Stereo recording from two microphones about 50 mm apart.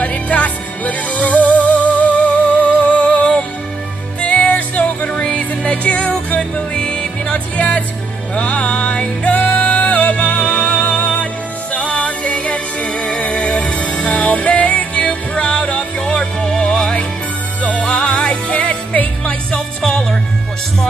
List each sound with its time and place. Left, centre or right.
0.0 s music: left; by 20.2 s centre